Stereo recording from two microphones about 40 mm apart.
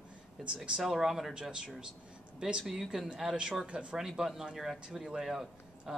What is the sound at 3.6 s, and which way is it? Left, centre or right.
Speech, right.